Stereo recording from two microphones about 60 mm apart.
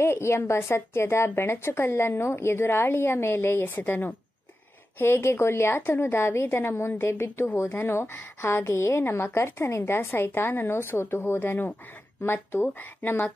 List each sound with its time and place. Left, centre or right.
0.0 s a woman's voice: left